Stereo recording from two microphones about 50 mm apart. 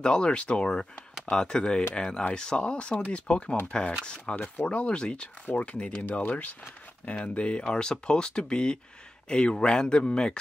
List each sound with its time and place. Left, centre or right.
0.0 s speech: centre
6.0 s speech: left
7.1 s speech: left